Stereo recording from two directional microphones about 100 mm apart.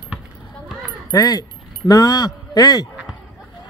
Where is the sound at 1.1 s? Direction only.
40° left (ahead or behind).